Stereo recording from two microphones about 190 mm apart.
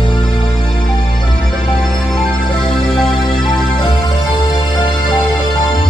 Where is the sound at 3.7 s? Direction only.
25° left (ahead or behind).